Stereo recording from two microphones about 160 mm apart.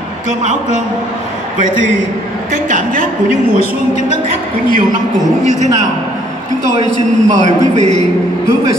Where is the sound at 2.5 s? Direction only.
55° right (ahead or behind).